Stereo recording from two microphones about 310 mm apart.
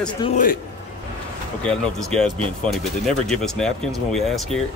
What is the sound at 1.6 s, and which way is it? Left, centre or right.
A man's voice, centre.